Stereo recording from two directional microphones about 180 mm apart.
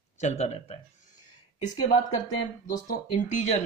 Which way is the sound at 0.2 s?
40° left (ahead or behind).